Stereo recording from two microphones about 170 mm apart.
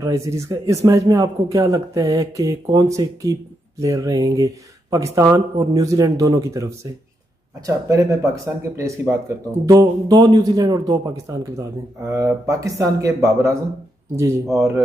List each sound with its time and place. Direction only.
0.0 s speech: 20° right (ahead or behind)